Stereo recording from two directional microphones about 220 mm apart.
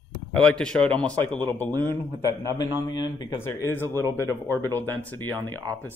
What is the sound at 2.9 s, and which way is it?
Speech, 20° left (ahead or behind).